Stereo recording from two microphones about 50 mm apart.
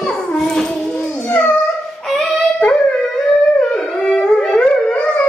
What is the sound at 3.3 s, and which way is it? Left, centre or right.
Howl, centre.